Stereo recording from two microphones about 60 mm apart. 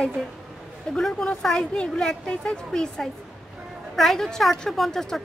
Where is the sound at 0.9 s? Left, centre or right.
Centre.